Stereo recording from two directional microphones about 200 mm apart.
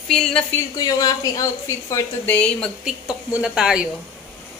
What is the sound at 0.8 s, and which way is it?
A woman's voice, 20° left (ahead or behind).